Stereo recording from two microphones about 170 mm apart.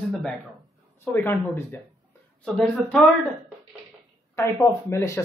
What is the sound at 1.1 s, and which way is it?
A woman's voice, 10° left (ahead or behind).